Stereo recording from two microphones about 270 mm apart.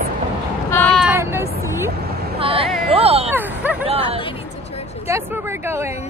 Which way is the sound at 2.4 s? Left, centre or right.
Right.